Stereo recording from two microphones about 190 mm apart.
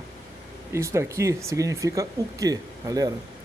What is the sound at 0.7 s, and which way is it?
Speech, 15° right (ahead or behind).